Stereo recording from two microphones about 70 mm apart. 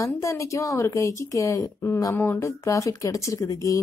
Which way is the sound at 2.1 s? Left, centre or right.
Left.